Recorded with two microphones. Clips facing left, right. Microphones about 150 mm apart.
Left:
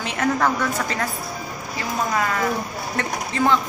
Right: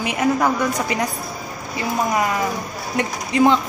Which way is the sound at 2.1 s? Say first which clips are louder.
Right 2 dB; 15° right (ahead or behind).